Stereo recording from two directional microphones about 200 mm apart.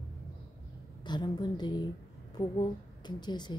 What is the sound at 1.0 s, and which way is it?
A woman's voice, 20° left (ahead or behind).